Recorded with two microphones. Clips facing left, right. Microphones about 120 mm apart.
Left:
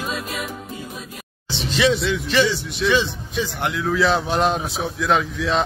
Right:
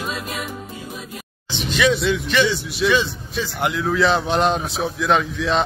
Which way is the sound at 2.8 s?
25° left (ahead or behind).